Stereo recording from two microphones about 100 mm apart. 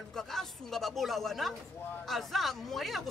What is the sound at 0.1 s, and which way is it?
A man's voice, 5° left (ahead or behind).